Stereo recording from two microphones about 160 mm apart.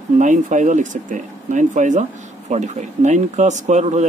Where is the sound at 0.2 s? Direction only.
50° right (ahead or behind).